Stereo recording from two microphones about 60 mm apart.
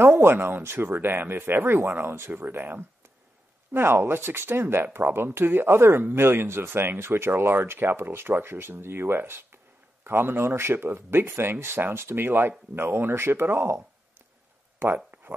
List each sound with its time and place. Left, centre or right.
0.0 s speech: right